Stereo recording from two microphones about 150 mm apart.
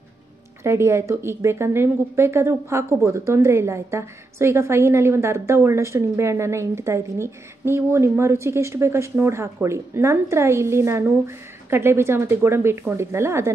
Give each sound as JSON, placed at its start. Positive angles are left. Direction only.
{"t": 0.7, "sound": "a woman's voice", "side_deg": -15}